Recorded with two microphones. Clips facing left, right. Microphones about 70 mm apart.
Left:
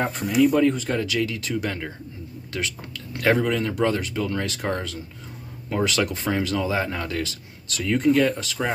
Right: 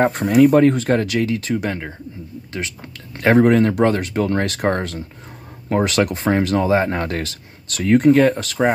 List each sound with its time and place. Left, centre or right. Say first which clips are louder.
0.3 s speech: right 6 dB; right
1.2 s speech: right 5 dB; right
3.4 s speech: right 8 dB; right